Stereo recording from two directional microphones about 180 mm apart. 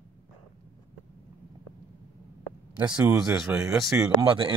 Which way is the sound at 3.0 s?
5° right (ahead or behind).